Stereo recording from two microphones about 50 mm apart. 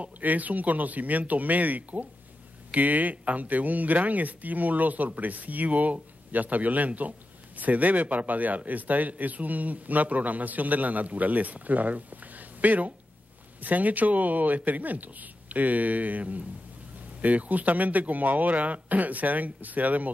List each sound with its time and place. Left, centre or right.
0.0 s speech: right